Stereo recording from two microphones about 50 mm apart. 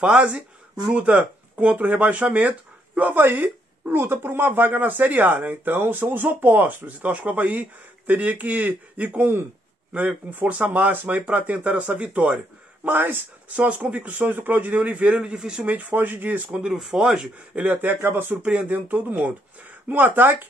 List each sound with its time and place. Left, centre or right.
0.9 s speech: right
3.1 s speech: right
7.0 s speech: right
10.6 s speech: right
12.8 s speech: right
13.6 s speech: right
15.1 s speech: centre
15.6 s speech: right
16.6 s speech: centre
17.6 s speech: right
18.3 s speech: centre
18.6 s speech: right